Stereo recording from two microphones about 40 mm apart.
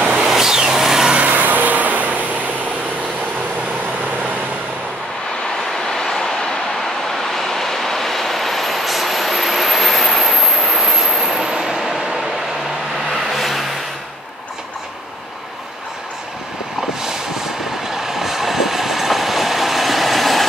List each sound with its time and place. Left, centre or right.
0.2 s vehicle: centre
1.3 s vehicle: right
5.9 s vehicle: centre
13.1 s vehicle: centre
17.0 s vehicle: centre